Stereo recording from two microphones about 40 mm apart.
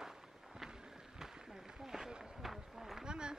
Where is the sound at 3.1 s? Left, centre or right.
Right.